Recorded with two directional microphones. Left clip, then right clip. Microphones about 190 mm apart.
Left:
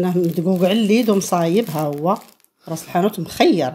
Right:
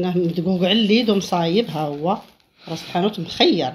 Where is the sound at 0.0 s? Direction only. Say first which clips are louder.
Left 2 dB; 50° left (ahead or behind).